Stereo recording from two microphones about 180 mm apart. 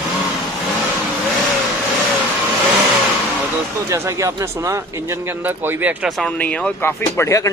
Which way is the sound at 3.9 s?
15° right (ahead or behind).